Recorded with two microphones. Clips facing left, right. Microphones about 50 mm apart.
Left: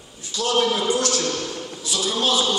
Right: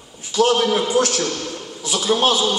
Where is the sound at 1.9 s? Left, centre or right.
Right.